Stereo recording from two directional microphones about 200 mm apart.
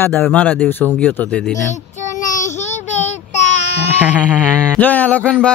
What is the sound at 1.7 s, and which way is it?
Child singing, 40° left (ahead or behind).